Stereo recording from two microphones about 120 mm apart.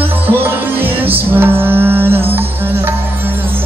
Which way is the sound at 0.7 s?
15° right (ahead or behind).